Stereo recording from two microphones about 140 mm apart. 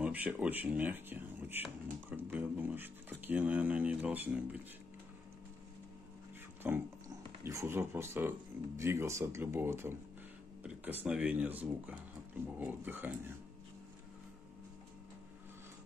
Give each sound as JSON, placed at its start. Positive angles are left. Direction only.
{"t": 0.0, "sound": "speech", "side_deg": -10}
{"t": 6.6, "sound": "speech", "side_deg": -10}